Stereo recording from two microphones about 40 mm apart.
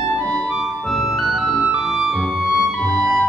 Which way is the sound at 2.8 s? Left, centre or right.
Left.